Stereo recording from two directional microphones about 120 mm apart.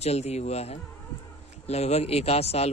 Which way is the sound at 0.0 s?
65° left (ahead or behind).